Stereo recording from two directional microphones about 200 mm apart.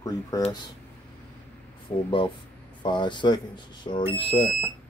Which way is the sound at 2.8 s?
25° left (ahead or behind).